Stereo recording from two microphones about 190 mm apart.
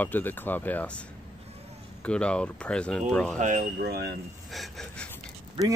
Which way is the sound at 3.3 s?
40° right (ahead or behind).